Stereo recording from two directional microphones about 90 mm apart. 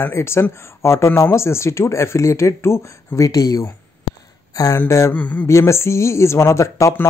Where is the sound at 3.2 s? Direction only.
45° left (ahead or behind).